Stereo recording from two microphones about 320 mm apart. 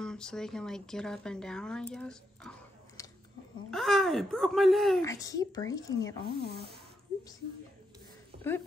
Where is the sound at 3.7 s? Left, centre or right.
Centre.